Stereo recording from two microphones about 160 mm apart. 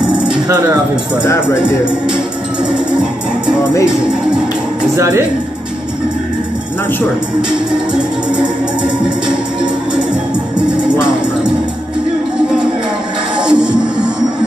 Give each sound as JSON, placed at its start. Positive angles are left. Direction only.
{"t": 1.2, "sound": "speech", "side_deg": 15}
{"t": 2.7, "sound": "music", "side_deg": -5}
{"t": 4.9, "sound": "speech", "side_deg": -15}
{"t": 7.4, "sound": "music", "side_deg": -5}
{"t": 13.4, "sound": "music", "side_deg": -5}